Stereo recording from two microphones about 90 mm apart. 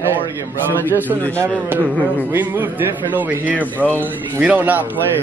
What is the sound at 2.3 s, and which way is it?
A man's voice, 25° right (ahead or behind).